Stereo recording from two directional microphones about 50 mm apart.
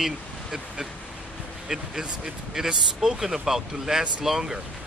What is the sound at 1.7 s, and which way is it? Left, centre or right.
Speech, centre.